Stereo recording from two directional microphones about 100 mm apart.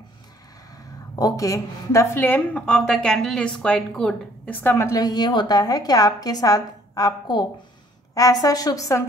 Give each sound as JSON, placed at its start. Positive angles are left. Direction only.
{"t": 1.1, "sound": "a woman's voice", "side_deg": 35}
{"t": 4.6, "sound": "a woman's voice", "side_deg": 25}
{"t": 5.0, "sound": "a woman's voice", "side_deg": 45}